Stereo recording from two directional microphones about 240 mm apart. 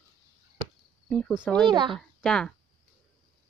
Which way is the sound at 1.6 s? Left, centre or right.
Centre.